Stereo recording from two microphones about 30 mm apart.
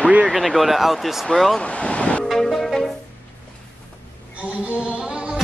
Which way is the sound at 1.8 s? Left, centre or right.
Left.